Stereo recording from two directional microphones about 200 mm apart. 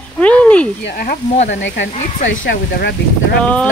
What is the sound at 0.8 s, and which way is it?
Speech, 50° left (ahead or behind).